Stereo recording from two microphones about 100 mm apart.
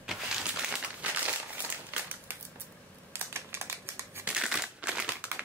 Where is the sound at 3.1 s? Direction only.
25° right (ahead or behind).